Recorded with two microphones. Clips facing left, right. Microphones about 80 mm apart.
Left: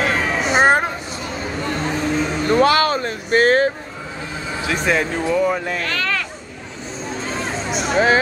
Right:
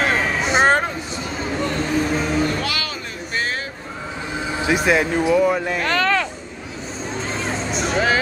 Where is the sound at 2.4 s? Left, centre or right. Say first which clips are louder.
Left 10 dB; left.